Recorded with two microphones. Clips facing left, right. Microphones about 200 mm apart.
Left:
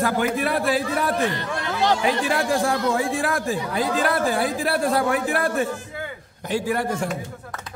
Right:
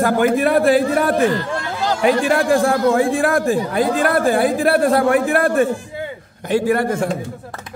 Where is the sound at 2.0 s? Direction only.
55° right (ahead or behind).